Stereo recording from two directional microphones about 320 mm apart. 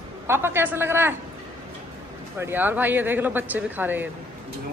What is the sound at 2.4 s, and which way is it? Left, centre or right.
Speech, centre.